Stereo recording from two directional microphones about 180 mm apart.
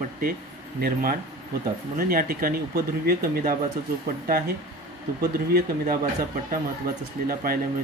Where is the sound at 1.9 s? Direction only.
55° right (ahead or behind).